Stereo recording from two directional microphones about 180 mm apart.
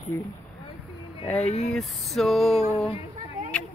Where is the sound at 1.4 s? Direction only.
35° left (ahead or behind).